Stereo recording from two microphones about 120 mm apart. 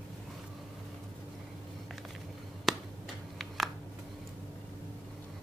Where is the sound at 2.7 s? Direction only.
Centre (ahead or behind).